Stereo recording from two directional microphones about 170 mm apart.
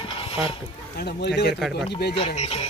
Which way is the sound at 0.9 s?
75° left (ahead or behind).